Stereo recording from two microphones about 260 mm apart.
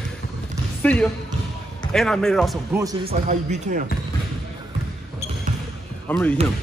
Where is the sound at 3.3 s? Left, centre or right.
Right.